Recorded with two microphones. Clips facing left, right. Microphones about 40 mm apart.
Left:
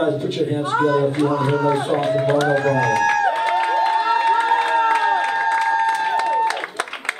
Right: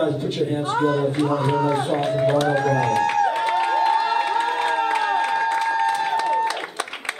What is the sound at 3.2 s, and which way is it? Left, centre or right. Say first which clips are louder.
Crowd: left 2 dB; centre.